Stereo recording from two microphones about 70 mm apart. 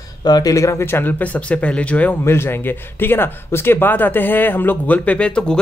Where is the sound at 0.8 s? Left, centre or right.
Left.